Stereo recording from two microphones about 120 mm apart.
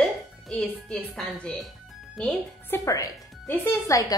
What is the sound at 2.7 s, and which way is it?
Speech, 30° left (ahead or behind).